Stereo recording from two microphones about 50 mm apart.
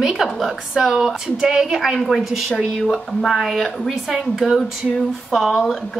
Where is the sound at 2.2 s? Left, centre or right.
Centre.